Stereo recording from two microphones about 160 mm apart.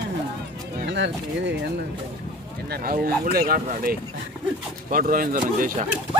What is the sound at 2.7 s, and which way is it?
Speech, 70° right (ahead or behind).